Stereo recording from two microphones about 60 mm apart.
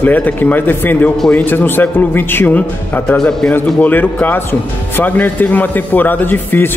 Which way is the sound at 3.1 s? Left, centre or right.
Centre.